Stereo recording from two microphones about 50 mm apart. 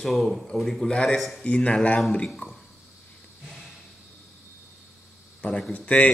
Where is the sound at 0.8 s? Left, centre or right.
Centre.